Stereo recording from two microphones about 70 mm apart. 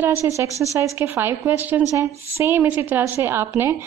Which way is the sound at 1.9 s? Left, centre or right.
Right.